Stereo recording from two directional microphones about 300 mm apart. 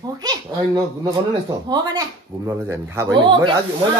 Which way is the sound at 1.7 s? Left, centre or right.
Centre.